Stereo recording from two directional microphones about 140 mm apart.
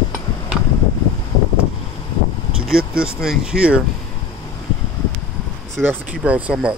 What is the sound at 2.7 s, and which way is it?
Speech, 5° right (ahead or behind).